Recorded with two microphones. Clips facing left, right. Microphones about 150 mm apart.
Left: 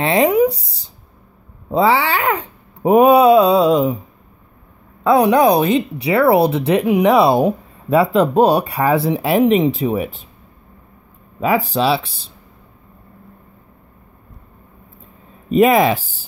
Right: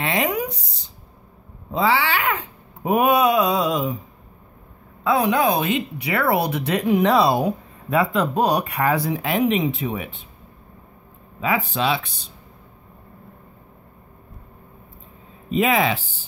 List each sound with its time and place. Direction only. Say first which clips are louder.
0.0 s speech: left 9 dB; 30° left (ahead or behind)
1.7 s speech: left 5 dB; 35° left (ahead or behind)
5.0 s speech: left 7 dB; 40° left (ahead or behind)
11.7 s speech: left 6 dB; 35° left (ahead or behind)
15.5 s speech: left 7 dB; 40° left (ahead or behind)